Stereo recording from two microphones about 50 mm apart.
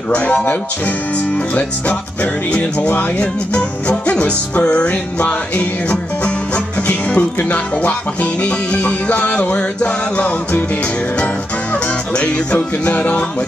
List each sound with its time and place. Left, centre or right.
0.1 s speech: left
2.5 s speech: left
11.7 s music: left